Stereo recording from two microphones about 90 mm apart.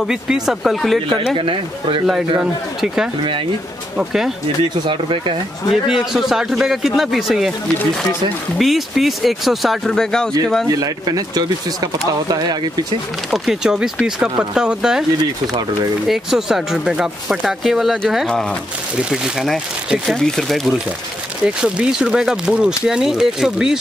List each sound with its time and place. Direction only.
0.0 s speech: 5° right (ahead or behind)
1.0 s speech: 70° right (ahead or behind)
4.0 s speech: 5° right (ahead or behind)
4.8 s speech: 70° right (ahead or behind)
5.7 s speech: 5° right (ahead or behind)
8.5 s speech: centre (ahead or behind)
10.7 s speech: 40° right (ahead or behind)
13.3 s speech: 5° right (ahead or behind)
19.9 s speech: 5° left (ahead or behind)
21.5 s speech: 10° right (ahead or behind)